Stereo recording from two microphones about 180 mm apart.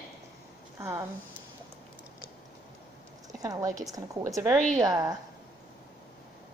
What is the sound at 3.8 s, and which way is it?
A woman's voice, 20° right (ahead or behind).